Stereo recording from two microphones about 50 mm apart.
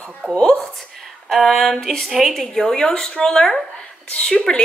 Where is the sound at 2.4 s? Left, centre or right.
Centre.